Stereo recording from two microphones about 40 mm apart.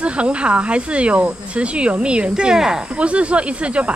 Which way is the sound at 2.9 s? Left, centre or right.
Right.